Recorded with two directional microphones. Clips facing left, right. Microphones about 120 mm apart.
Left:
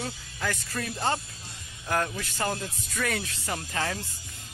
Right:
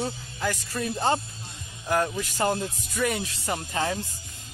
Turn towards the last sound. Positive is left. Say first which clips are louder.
# right 3 dB
turn(degrees=-20)  # may be behind; listen again after turning